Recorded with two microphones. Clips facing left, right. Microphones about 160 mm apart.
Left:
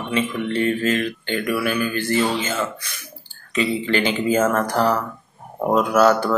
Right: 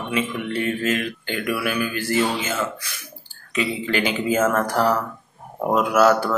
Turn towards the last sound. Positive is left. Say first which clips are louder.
# left 1 dB
turn(degrees=-5)  # may be behind; listen again after turning